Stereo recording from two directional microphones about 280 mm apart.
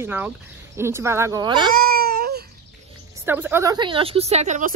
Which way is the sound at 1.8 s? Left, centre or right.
Right.